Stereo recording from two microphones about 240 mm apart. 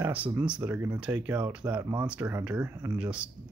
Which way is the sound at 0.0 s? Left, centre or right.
Centre.